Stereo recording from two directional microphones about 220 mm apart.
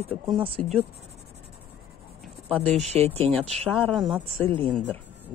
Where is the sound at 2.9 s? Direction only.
25° right (ahead or behind).